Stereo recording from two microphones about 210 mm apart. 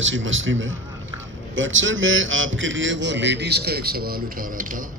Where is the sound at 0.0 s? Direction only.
65° right (ahead or behind).